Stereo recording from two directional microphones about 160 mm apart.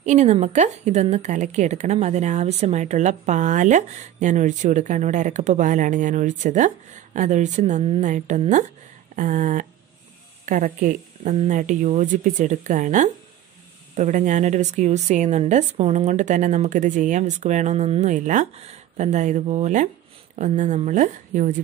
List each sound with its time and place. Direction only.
0.0 s a woman's voice: 45° right (ahead or behind)
18.1 s a woman's voice: 50° right (ahead or behind)